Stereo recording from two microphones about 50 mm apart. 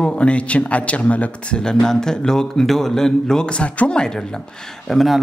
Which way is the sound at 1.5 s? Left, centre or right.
Centre.